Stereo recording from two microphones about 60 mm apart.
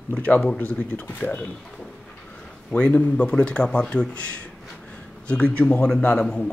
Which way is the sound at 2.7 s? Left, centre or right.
Left.